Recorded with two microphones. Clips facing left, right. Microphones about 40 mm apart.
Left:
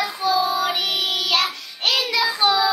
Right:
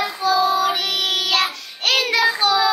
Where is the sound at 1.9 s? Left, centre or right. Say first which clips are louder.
Right 3 dB; right.